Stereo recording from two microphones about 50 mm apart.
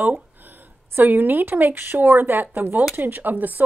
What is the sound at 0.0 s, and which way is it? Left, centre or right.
A woman's voice, right.